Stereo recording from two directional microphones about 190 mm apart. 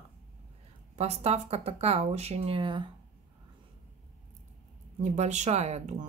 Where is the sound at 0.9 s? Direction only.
35° right (ahead or behind).